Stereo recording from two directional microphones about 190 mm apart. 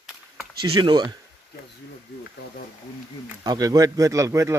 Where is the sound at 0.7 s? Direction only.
25° right (ahead or behind).